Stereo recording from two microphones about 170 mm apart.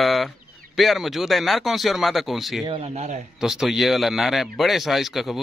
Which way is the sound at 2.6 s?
35° right (ahead or behind).